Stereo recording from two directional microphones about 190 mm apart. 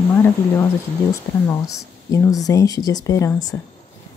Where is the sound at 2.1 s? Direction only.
20° left (ahead or behind).